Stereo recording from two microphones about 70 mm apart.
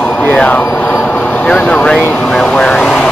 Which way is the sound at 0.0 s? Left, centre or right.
Left.